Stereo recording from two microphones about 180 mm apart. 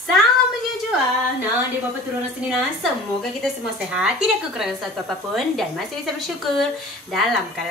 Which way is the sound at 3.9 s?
5° right (ahead or behind).